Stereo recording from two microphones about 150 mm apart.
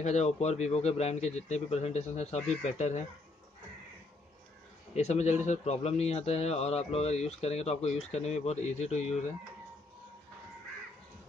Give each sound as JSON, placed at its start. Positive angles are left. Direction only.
{"t": 0.0, "sound": "a man's voice", "side_deg": 50}
{"t": 4.9, "sound": "a man's voice", "side_deg": 50}